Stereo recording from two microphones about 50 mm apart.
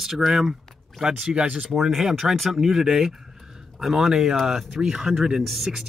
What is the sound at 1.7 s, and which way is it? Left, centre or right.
Speech, centre.